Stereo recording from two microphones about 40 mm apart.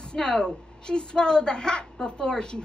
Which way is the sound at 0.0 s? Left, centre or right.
Left.